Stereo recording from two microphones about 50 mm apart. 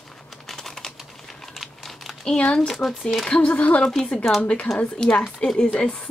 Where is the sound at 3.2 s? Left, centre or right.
Left.